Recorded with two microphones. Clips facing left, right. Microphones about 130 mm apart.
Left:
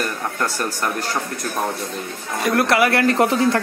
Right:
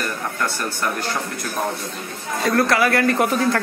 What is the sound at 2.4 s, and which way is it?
A man's voice, 20° left (ahead or behind).